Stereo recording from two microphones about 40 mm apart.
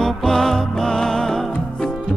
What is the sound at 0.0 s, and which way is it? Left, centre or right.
Music, centre.